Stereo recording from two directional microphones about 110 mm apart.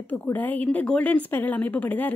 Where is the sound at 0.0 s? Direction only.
15° left (ahead or behind).